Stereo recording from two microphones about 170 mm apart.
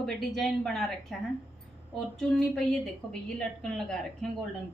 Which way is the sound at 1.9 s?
Centre (ahead or behind).